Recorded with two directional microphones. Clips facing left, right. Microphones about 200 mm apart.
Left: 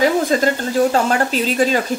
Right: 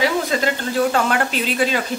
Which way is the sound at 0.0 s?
40° left (ahead or behind).